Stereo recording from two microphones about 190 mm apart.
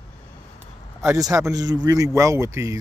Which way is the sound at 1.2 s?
15° right (ahead or behind).